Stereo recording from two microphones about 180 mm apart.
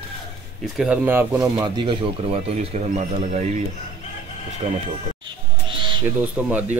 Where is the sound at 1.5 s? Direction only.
25° right (ahead or behind).